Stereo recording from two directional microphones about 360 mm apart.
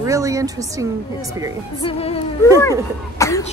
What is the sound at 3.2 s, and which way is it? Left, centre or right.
Cough, centre.